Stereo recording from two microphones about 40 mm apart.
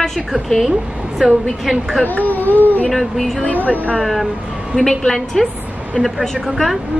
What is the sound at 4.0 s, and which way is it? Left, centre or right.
Speech, centre.